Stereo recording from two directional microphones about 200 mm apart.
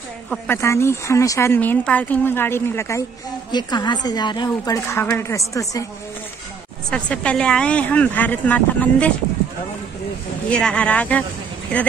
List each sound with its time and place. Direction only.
0.3 s speech: 10° left (ahead or behind)
6.9 s speech: 5° left (ahead or behind)
10.5 s speech: 5° left (ahead or behind)